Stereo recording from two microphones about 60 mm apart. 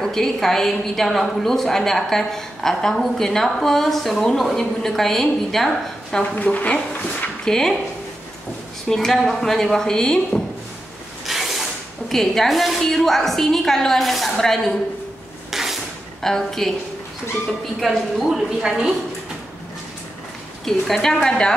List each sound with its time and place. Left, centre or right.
0.0 s a woman's voice: centre
6.3 s speech: left
7.4 s speech: centre
8.8 s speech: centre
11.2 s mechanisms: centre
12.1 s a woman's voice: centre
15.5 s drawer open or close: centre
16.2 s a woman's voice: centre
20.6 s speech: centre